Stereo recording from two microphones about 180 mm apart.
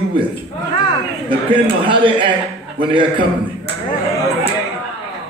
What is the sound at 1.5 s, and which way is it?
A man's voice, 30° right (ahead or behind).